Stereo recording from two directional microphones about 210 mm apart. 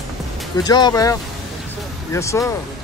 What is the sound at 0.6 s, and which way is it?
Speech, 20° left (ahead or behind).